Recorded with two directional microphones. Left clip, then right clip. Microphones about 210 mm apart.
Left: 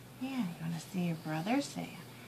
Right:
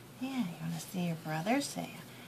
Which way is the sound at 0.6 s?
20° right (ahead or behind).